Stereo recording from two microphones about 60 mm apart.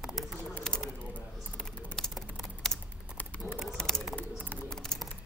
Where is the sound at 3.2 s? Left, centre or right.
Left.